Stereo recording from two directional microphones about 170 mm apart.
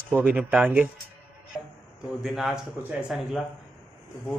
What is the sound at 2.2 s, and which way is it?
A man's voice, centre (ahead or behind).